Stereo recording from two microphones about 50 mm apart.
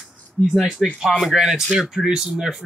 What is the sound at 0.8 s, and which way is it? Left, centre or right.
Speech, centre.